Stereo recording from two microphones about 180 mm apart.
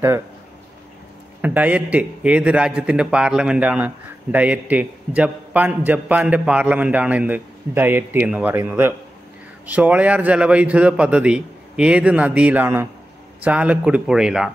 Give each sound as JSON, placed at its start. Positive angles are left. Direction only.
{"t": 1.4, "sound": "a man's voice", "side_deg": -10}